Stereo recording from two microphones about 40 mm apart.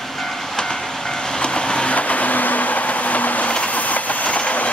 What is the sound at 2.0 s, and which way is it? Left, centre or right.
Vehicle, left.